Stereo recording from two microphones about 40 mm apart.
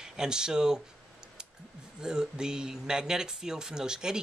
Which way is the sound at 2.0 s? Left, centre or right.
Centre.